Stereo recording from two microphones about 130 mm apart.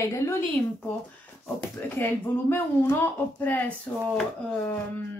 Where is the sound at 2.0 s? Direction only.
20° left (ahead or behind).